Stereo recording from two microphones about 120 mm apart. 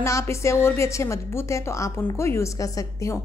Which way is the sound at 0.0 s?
25° left (ahead or behind).